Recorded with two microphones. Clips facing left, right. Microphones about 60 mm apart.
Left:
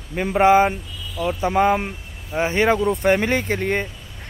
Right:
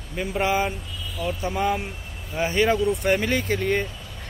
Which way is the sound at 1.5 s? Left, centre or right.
Left.